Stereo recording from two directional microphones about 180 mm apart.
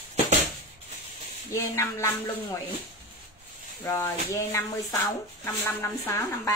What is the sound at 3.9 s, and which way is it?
Speech, 15° left (ahead or behind).